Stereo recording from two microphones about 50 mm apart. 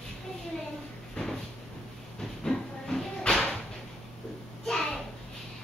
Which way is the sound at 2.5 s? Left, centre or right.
Centre.